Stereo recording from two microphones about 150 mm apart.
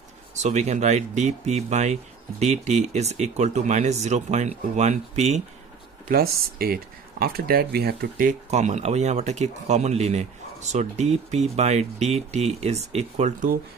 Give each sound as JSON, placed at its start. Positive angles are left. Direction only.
{"t": 0.4, "sound": "speech", "side_deg": -50}
{"t": 6.0, "sound": "speech", "side_deg": -90}
{"t": 8.5, "sound": "speech", "side_deg": -50}